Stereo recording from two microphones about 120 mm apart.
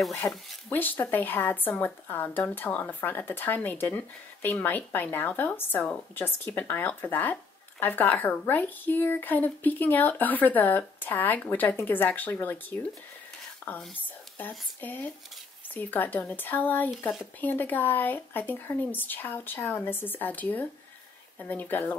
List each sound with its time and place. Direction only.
0.2 s speech: 20° left (ahead or behind)
14.8 s speech: 15° left (ahead or behind)